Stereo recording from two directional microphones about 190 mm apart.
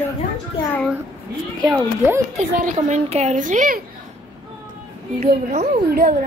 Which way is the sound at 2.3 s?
40° right (ahead or behind).